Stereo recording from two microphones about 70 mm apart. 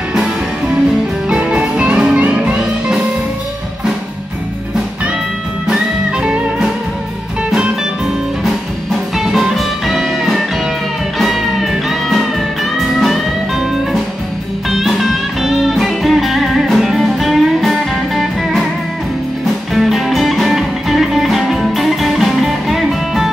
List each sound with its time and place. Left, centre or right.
1.3 s music: centre
5.7 s music: centre
8.5 s music: centre